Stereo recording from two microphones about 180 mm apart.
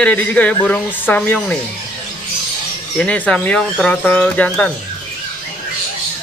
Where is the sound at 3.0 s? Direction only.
5° left (ahead or behind).